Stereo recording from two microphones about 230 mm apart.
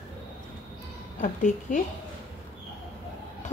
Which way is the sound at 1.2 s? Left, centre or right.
Left.